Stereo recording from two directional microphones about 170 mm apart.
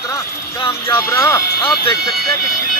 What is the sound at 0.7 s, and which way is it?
Speech, 15° left (ahead or behind).